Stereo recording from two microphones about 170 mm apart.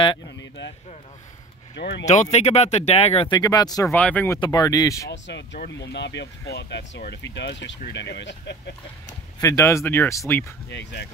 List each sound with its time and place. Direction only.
1.8 s speech: 75° left (ahead or behind)
2.3 s speech: 40° left (ahead or behind)
3.3 s speech: 20° left (ahead or behind)
3.9 s speech: 10° left (ahead or behind)
4.4 s speech: 25° left (ahead or behind)
5.1 s speech: 90° left
9.0 s speech: 20° left (ahead or behind)
10.7 s speech: 85° left